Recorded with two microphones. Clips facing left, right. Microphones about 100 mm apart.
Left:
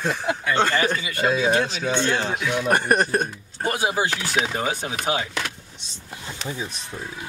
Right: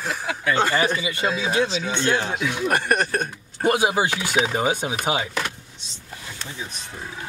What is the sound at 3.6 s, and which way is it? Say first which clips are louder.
Speech: right 3 dB; 20° right (ahead or behind).